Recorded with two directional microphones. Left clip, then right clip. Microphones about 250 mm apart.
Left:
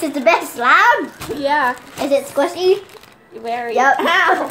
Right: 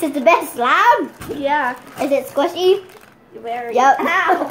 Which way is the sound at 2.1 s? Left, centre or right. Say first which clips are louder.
Left 1 dB; centre.